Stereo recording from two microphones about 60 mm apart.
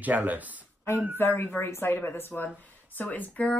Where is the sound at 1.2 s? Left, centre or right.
Left.